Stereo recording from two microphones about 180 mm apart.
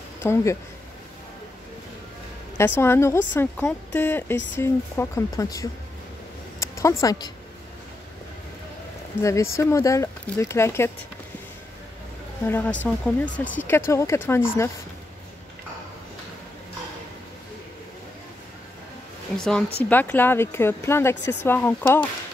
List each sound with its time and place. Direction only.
0.2 s speech: 15° left (ahead or behind)
2.5 s speech: 15° left (ahead or behind)
9.2 s speech: 15° left (ahead or behind)
12.4 s speech: 10° left (ahead or behind)
19.3 s a woman's voice: 5° left (ahead or behind)